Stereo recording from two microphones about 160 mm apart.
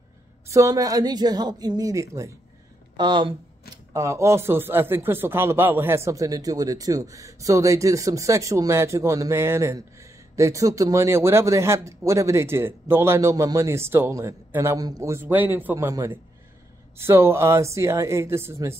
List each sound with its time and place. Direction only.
0.5 s a woman's voice: 20° right (ahead or behind)
3.0 s a woman's voice: 30° right (ahead or behind)
3.9 s a man's voice: 20° right (ahead or behind)